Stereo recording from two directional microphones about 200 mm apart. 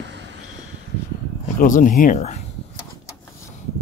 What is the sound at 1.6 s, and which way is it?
Speech, 40° left (ahead or behind).